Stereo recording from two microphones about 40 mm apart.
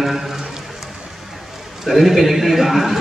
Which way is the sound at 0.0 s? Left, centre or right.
Centre.